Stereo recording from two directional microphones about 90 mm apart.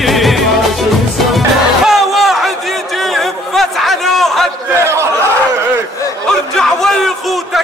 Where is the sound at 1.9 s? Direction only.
Centre (ahead or behind).